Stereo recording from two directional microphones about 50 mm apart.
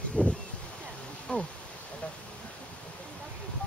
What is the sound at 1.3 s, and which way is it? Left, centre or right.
Bee, centre.